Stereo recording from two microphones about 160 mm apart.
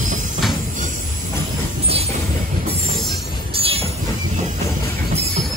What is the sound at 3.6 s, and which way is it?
Train, 35° right (ahead or behind).